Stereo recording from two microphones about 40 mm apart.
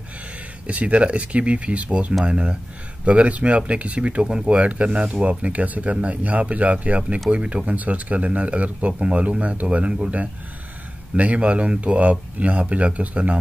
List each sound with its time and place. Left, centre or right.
0.7 s speech: right
3.1 s speech: right
5.3 s speech: right
11.1 s speech: right